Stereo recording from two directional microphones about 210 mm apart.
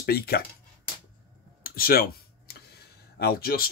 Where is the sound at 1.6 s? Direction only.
45° left (ahead or behind).